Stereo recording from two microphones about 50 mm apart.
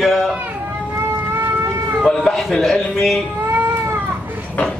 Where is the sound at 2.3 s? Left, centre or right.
Centre.